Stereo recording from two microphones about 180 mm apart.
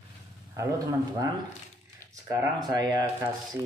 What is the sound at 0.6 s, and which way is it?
Speech, 20° right (ahead or behind).